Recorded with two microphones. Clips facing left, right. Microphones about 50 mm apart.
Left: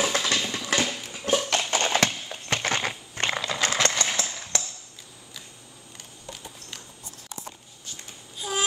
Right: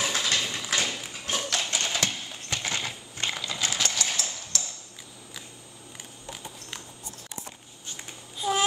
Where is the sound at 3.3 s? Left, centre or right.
Left.